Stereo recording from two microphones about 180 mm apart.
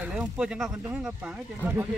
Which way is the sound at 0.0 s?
5° right (ahead or behind).